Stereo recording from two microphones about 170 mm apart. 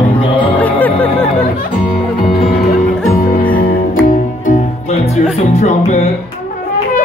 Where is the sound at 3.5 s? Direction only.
55° left (ahead or behind).